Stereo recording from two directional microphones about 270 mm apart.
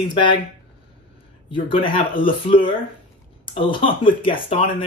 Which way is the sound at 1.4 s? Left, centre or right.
Centre.